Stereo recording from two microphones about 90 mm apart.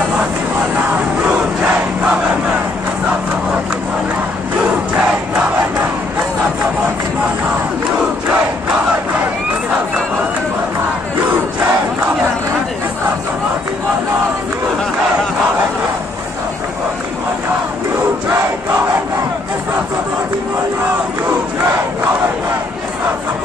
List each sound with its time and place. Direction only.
0.7 s crowd: 20° right (ahead or behind)